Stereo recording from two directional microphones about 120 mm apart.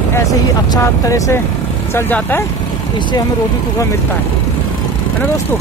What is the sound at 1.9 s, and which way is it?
Speech, 15° left (ahead or behind).